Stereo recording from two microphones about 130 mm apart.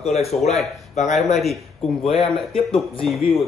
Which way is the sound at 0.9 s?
65° left (ahead or behind).